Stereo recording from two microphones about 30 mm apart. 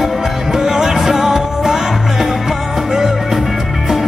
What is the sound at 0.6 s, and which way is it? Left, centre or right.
Music, centre.